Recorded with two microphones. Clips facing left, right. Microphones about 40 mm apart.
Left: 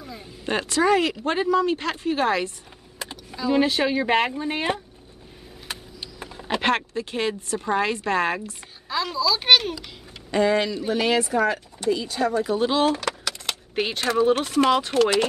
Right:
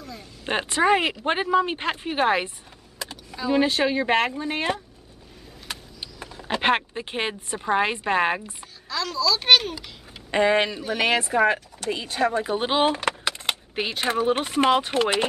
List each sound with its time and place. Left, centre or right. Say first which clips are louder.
0.5 s speech: even; right
3.0 s computer keyboard: even; centre
3.3 s speech: left 1 dB; centre
6.1 s a sound: left 1 dB; centre
6.6 s speech: right 2 dB; right
8.8 s a child's voice: left 1 dB; centre
10.3 s speech: even; right
13.7 s speech: left 5 dB; centre
14.3 s speech: left 1 dB; right